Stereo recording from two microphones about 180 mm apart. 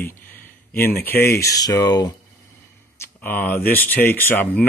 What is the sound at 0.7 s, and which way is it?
Speech, 10° left (ahead or behind).